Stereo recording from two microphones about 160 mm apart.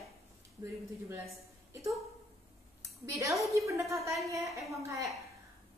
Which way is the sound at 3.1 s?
20° right (ahead or behind).